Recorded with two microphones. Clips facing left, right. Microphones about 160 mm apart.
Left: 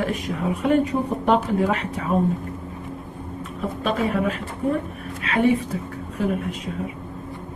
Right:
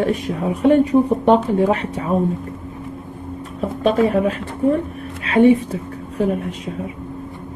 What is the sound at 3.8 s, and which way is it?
A woman's voice, 30° right (ahead or behind).